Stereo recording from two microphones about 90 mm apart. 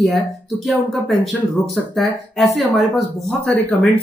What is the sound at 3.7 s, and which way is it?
Speech, 15° left (ahead or behind).